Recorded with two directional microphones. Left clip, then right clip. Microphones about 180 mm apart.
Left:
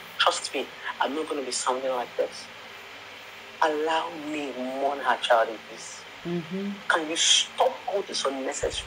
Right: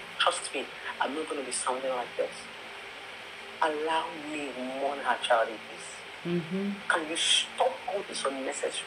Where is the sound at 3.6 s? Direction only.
20° left (ahead or behind).